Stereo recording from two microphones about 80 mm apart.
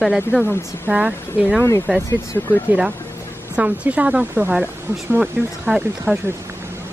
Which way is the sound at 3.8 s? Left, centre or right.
Centre.